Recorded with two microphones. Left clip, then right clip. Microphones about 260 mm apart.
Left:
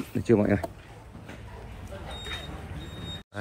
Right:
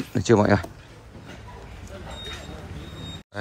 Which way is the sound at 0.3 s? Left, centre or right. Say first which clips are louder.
Right 5 dB; left.